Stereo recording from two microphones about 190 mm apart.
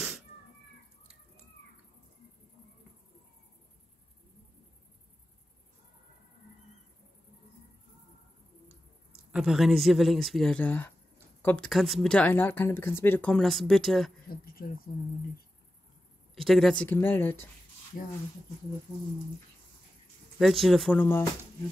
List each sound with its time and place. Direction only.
9.3 s speech: 5° right (ahead or behind)
14.3 s speech: 50° left (ahead or behind)
16.3 s speech: centre (ahead or behind)
20.3 s speech: centre (ahead or behind)